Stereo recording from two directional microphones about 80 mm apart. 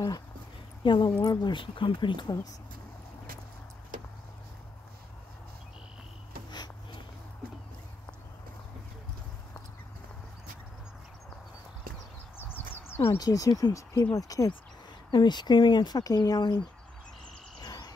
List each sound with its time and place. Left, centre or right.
0.8 s speech: left
1.2 s speech: left
1.5 s speech: left
12.4 s a sound: left
13.2 s speech: left
15.0 s speech: left
17.6 s a sound: left